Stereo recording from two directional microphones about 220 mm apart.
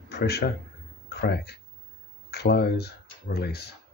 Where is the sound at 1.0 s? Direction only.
50° left (ahead or behind).